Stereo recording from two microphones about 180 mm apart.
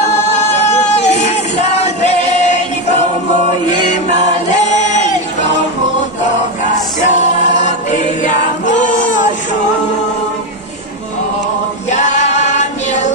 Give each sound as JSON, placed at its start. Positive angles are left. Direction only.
{"t": 0.3, "sound": "music", "side_deg": 40}
{"t": 3.7, "sound": "music", "side_deg": 40}
{"t": 7.1, "sound": "choir", "side_deg": 40}
{"t": 11.9, "sound": "music", "side_deg": 40}